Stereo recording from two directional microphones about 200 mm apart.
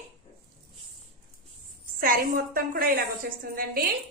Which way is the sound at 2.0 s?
45° right (ahead or behind).